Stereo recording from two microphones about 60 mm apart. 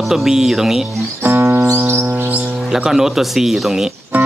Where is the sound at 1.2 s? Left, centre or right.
Right.